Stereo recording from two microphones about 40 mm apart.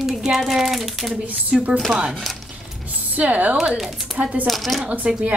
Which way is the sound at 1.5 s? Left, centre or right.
Centre.